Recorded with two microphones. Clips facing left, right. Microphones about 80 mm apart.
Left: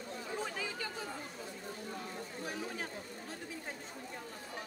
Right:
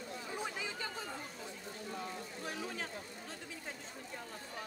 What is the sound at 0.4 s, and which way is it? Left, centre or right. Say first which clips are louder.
Chatter: left 1 dB; centre.